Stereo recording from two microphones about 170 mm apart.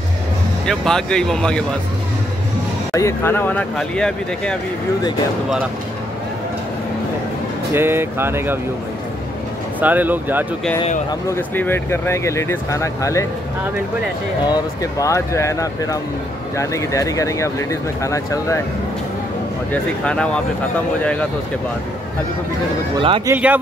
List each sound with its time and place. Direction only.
0.7 s speech: 5° left (ahead or behind)
2.9 s speech: 15° left (ahead or behind)
7.7 s speech: 15° right (ahead or behind)
9.8 s speech: 10° right (ahead or behind)
11.1 s speech: 15° left (ahead or behind)
14.4 s speech: 20° left (ahead or behind)
19.7 s speech: 5° left (ahead or behind)
23.2 s speech: 10° right (ahead or behind)